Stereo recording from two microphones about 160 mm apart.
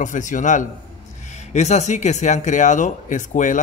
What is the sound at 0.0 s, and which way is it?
A man's voice, 50° left (ahead or behind).